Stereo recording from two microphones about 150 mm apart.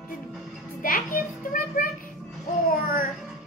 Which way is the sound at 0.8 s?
65° left (ahead or behind).